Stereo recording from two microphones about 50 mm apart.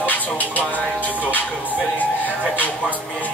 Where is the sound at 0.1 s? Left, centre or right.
Left.